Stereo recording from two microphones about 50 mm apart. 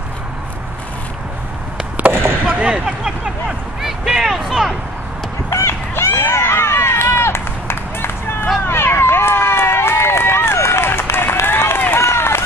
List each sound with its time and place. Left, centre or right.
2.6 s speech: right
3.0 s a sound: centre
5.7 s run: left